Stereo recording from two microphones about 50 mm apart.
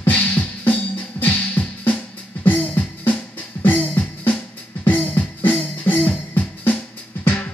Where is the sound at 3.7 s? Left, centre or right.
Left.